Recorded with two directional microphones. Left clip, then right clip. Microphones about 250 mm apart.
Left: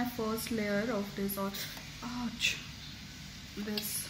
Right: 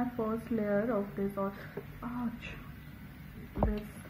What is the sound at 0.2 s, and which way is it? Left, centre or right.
Speech, centre.